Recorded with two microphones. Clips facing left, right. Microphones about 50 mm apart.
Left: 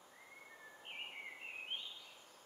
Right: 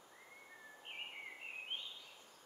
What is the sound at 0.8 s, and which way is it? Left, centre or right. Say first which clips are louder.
Bird: even; centre.